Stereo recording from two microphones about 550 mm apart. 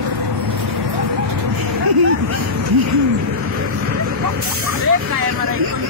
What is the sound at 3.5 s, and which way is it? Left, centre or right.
Vehicle, right.